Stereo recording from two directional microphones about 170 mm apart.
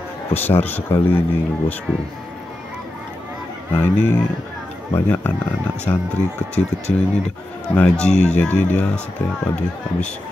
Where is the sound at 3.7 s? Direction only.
10° left (ahead or behind).